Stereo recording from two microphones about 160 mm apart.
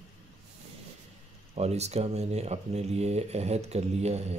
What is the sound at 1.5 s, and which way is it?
A man's voice, 40° right (ahead or behind).